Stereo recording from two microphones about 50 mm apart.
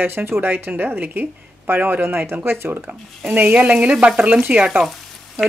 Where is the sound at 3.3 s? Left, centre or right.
Right.